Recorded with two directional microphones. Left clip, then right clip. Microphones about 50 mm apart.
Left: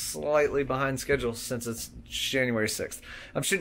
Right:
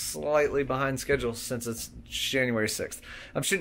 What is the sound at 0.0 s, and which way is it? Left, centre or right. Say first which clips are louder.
Speech: even; right.